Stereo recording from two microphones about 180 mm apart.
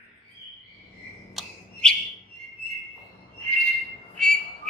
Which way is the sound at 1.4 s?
Centre (ahead or behind).